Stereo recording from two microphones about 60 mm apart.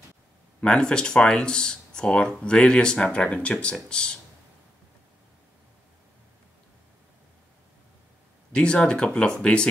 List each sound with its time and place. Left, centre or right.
0.6 s speech: centre
8.5 s speech: centre